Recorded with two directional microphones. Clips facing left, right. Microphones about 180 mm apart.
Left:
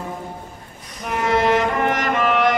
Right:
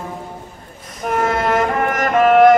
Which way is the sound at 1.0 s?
50° right (ahead or behind).